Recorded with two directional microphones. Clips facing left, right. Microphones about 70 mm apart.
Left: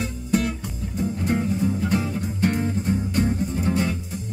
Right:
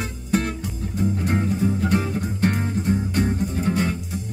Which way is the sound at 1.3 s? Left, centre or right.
Right.